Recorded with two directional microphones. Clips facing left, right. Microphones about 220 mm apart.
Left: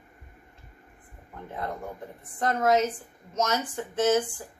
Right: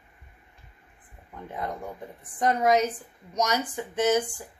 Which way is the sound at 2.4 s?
15° right (ahead or behind).